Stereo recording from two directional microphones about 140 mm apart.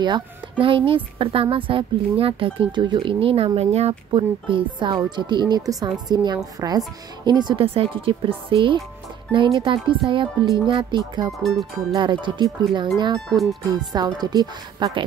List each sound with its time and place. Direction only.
0.0 s speech: 35° right (ahead or behind)
11.3 s speech: centre (ahead or behind)
11.9 s speech: 35° right (ahead or behind)